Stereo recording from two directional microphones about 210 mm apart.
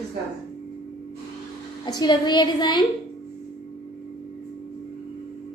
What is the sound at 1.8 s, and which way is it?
A woman's voice, 20° left (ahead or behind).